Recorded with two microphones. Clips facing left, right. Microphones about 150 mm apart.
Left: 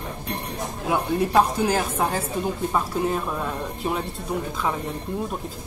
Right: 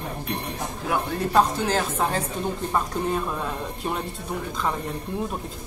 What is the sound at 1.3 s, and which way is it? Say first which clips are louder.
Speech: right 1 dB; 10° left (ahead or behind).